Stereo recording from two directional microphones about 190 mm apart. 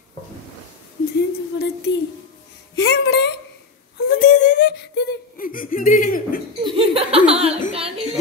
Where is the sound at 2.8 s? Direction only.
60° left (ahead or behind).